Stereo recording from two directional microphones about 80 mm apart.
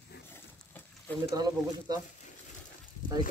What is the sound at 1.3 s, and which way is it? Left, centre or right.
Speech, right.